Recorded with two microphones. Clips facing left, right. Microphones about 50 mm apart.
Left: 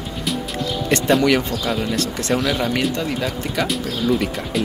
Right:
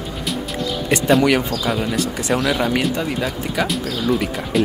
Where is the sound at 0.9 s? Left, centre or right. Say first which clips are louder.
Right 1 dB; centre.